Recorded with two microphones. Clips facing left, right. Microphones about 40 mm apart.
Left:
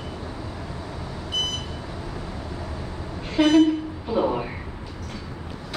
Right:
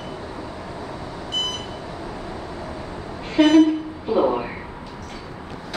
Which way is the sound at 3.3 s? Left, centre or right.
Centre.